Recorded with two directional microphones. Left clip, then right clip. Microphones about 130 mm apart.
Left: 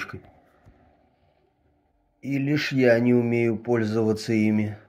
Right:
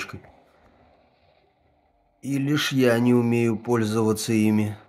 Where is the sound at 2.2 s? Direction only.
30° right (ahead or behind).